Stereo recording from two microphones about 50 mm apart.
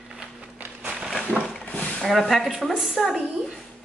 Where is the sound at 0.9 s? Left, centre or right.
Centre.